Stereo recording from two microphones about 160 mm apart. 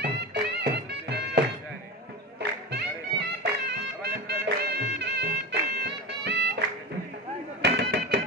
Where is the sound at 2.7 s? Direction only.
90° right.